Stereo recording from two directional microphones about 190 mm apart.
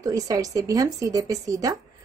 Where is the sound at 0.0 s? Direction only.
20° right (ahead or behind).